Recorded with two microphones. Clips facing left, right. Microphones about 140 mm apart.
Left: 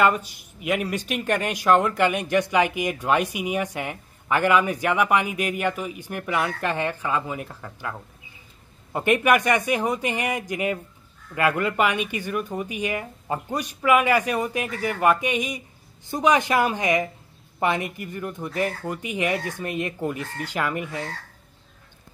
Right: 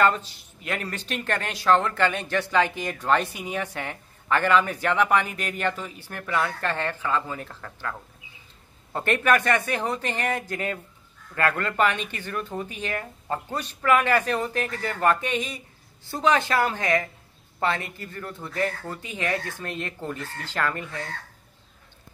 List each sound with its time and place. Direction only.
0.0 s speech: 10° left (ahead or behind)
8.9 s speech: 15° left (ahead or behind)